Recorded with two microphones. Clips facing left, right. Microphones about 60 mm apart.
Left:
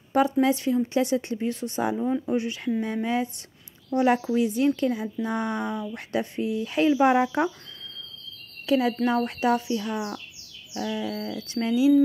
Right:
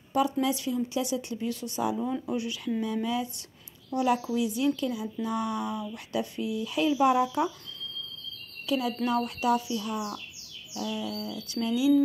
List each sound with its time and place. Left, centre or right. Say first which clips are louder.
0.1 s speech: left 5 dB; left
8.6 s speech: left 5 dB; left